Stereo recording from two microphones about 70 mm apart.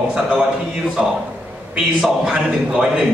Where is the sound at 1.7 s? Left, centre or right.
Centre.